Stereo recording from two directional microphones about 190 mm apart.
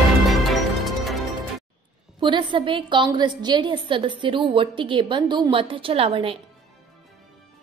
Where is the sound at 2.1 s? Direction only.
25° right (ahead or behind).